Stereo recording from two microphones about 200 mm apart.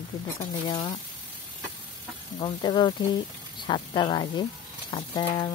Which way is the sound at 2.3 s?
25° left (ahead or behind).